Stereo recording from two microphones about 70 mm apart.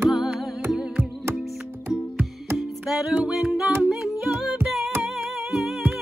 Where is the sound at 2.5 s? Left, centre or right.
Centre.